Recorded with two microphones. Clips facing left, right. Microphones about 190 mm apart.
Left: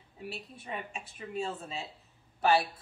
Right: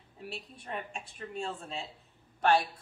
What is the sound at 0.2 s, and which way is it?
Speech, centre (ahead or behind).